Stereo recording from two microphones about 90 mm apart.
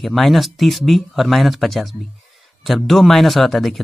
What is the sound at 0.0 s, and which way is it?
Speech, centre (ahead or behind).